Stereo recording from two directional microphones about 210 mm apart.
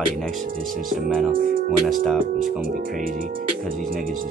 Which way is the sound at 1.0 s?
Centre (ahead or behind).